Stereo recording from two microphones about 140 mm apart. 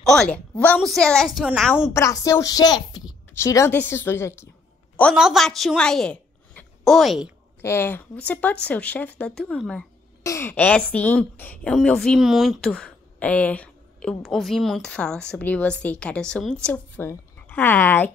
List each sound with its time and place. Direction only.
0.0 s a woman's voice: 5° left (ahead or behind)
2.0 s a woman's voice: 20° left (ahead or behind)
5.1 s a woman's voice: centre (ahead or behind)
7.6 s a woman's voice: 15° left (ahead or behind)
10.2 s a woman's voice: 20° left (ahead or behind)